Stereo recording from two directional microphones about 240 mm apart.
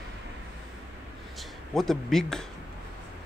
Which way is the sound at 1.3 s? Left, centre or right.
Centre.